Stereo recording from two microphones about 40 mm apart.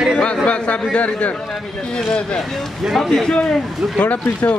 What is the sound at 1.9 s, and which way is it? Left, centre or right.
Speech, left.